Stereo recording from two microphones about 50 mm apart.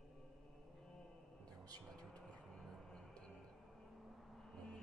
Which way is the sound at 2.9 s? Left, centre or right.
Centre.